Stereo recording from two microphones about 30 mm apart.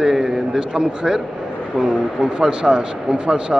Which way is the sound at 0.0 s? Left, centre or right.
Right.